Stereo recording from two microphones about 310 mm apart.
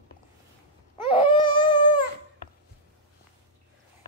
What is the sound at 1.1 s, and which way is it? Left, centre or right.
Baby cry, centre.